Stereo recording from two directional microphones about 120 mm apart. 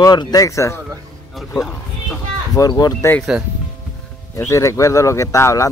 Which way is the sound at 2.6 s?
35° left (ahead or behind).